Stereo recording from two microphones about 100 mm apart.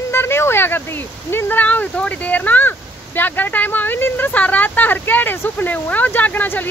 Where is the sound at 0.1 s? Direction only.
25° left (ahead or behind).